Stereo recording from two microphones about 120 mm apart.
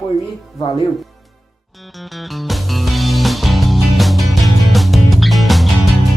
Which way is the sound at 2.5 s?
Centre (ahead or behind).